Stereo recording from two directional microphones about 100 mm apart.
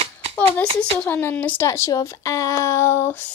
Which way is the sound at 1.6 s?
30° left (ahead or behind).